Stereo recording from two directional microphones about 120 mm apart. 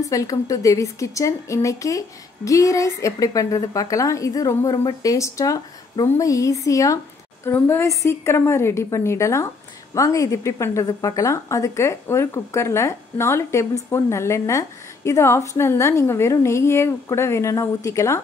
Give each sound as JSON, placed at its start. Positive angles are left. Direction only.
{"t": 0.0, "sound": "a woman's voice", "side_deg": 30}